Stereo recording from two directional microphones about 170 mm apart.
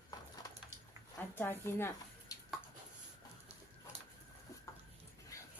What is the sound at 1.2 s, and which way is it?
Speech, 10° left (ahead or behind).